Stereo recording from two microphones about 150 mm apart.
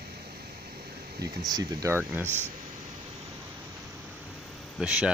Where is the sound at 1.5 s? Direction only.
25° right (ahead or behind).